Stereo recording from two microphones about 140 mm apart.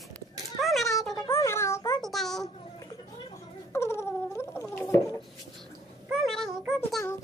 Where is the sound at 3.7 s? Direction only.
20° left (ahead or behind).